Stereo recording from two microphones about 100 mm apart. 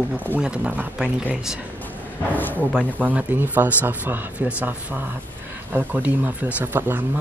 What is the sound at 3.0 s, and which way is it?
Speech, 15° right (ahead or behind).